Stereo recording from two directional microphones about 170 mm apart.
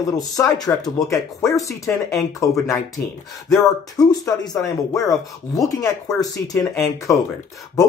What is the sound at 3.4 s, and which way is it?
Speech, 20° left (ahead or behind).